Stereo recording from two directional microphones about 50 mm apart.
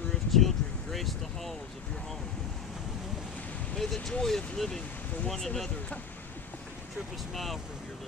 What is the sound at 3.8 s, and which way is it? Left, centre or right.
Speech, centre.